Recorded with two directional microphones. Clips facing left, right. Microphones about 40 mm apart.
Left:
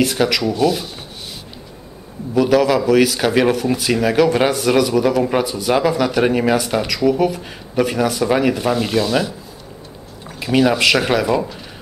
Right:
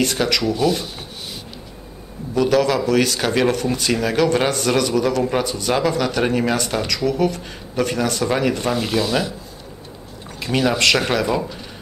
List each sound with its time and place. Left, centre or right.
0.0 s speech: centre
2.3 s speech: centre